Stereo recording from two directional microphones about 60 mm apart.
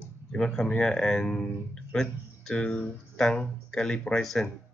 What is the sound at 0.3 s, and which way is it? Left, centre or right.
Speech, centre.